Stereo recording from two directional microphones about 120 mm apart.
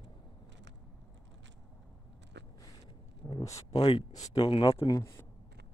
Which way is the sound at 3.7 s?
55° left (ahead or behind).